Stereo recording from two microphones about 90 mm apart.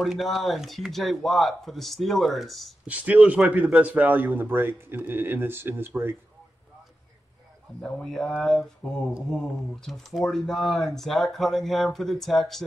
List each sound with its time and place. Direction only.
0.0 s speech: centre (ahead or behind)
2.9 s speech: 15° right (ahead or behind)
7.8 s speech: 5° left (ahead or behind)